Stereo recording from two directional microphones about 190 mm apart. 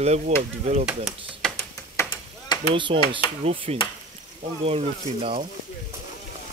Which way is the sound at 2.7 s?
30° right (ahead or behind).